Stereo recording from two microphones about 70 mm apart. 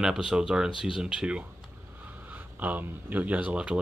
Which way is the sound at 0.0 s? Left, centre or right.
Centre.